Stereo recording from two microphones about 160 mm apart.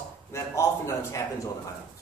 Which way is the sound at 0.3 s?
20° left (ahead or behind).